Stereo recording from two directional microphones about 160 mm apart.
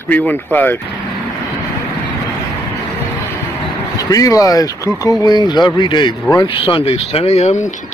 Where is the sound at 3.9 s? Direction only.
20° left (ahead or behind).